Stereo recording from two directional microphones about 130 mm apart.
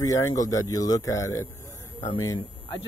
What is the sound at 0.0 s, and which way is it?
Speech, 25° left (ahead or behind).